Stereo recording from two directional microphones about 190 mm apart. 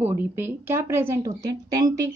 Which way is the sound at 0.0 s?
10° right (ahead or behind).